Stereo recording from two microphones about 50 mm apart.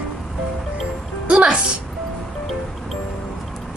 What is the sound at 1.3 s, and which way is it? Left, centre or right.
Speech, right.